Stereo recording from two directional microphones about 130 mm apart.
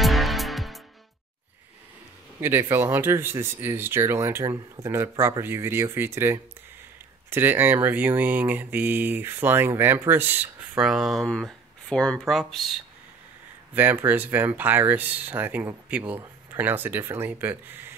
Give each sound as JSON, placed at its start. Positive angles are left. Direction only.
{"t": 0.0, "sound": "music", "side_deg": 0}
{"t": 2.4, "sound": "speech", "side_deg": -15}
{"t": 13.7, "sound": "speech", "side_deg": -15}